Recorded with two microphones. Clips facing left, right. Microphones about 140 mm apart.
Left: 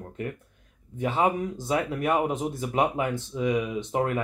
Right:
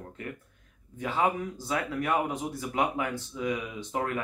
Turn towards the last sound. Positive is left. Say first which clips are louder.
# left 5 dB
turn(degrees=25)  # may be behind; listen again after turning